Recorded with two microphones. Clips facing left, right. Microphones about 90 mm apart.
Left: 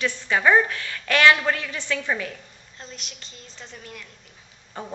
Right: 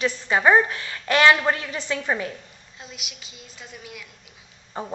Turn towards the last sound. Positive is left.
turn(degrees=-30)  # may be behind; listen again after turning